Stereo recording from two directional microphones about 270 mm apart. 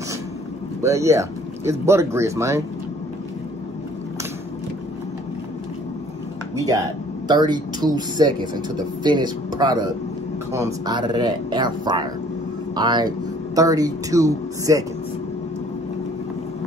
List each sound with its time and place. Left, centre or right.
0.8 s speech: centre
6.5 s speech: centre